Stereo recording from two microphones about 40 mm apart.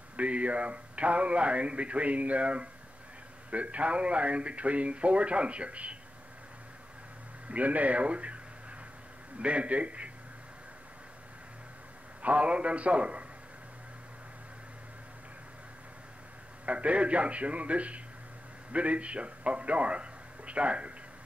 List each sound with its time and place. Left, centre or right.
0.2 s speech: right
7.4 s speech: right
9.4 s speech: right
12.2 s speech: right
16.6 s a man's voice: right